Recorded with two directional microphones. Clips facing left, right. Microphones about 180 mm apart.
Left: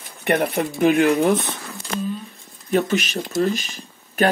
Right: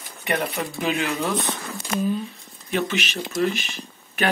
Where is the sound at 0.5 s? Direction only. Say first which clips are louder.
Left 8 dB; 55° left (ahead or behind).